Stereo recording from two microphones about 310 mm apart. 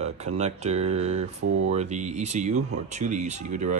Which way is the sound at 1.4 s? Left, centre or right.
Right.